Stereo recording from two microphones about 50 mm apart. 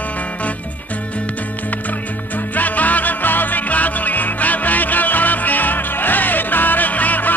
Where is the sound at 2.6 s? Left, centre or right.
Left.